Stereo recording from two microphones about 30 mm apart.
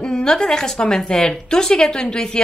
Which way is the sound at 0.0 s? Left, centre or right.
Left.